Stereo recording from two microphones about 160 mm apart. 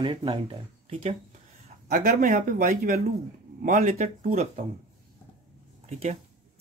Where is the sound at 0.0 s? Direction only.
30° right (ahead or behind).